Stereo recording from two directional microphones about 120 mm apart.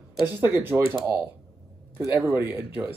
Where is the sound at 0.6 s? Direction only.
20° right (ahead or behind).